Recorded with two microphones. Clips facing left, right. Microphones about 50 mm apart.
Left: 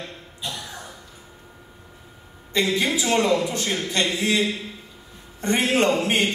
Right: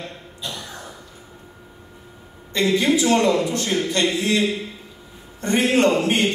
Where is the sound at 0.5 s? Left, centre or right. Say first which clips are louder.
Even; centre.